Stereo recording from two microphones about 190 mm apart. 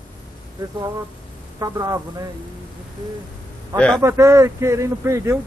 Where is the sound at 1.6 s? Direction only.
20° right (ahead or behind).